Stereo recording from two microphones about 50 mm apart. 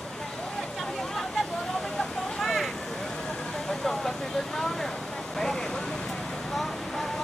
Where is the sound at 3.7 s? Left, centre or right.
Centre.